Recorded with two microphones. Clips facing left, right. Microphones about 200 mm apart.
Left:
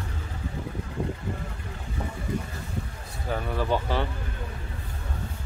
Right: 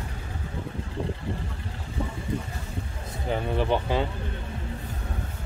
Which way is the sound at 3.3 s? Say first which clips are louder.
Right 2 dB; 20° right (ahead or behind).